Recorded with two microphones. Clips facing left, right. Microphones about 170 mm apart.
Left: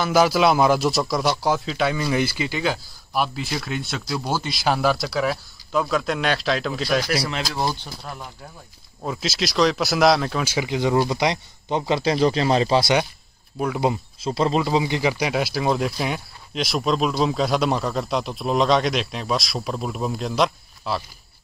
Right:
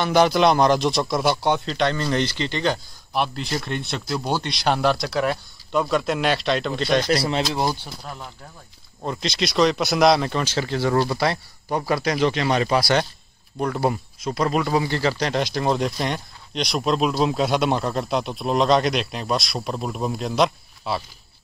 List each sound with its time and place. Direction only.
0.0 s speech: 5° left (ahead or behind)
7.5 s speech: 15° right (ahead or behind)
9.0 s speech: 5° left (ahead or behind); by 12.9 s 30° left (ahead or behind)
13.6 s speech: 5° left (ahead or behind)
14.2 s speech: 25° left (ahead or behind)
14.6 s speech: 15° left (ahead or behind); by 21.0 s centre (ahead or behind)